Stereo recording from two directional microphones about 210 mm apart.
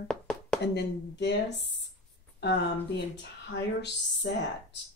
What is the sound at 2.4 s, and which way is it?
Speech, 55° left (ahead or behind).